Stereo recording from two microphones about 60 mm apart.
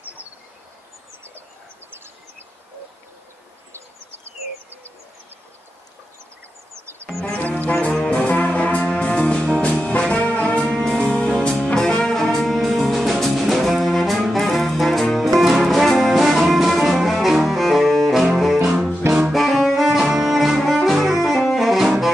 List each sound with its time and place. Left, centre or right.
7.1 s music: centre
7.3 s brass instrument: left
9.8 s music: centre
10.7 s music: centre
19.3 s saxophone: centre
20.2 s music: centre
21.8 s saxophone: centre